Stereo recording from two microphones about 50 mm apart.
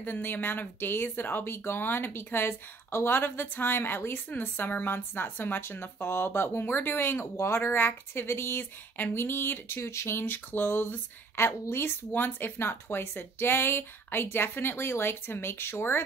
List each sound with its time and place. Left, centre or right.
0.0 s speech: left
7.3 s a woman's voice: left
12.1 s speech: left